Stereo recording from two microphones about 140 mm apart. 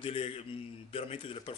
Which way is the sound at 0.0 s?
40° left (ahead or behind).